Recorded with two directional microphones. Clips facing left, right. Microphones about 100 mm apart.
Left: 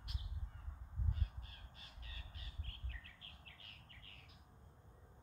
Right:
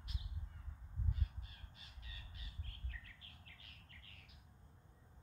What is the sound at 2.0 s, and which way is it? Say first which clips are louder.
Bird: even; 45° left (ahead or behind).